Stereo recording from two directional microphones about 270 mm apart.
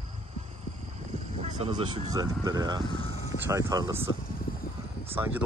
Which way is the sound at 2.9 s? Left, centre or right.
Centre.